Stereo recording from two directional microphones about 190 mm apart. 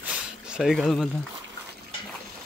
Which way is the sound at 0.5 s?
Centre (ahead or behind).